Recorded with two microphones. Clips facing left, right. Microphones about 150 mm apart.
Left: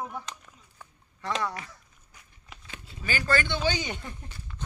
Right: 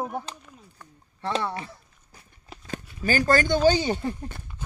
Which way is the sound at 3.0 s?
40° right (ahead or behind).